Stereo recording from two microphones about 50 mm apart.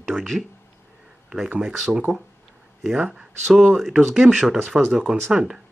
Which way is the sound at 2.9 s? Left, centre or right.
Centre.